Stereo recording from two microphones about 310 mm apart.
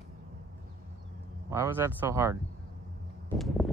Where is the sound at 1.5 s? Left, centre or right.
Centre.